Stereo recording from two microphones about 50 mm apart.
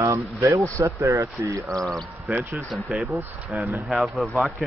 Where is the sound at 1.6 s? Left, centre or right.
Centre.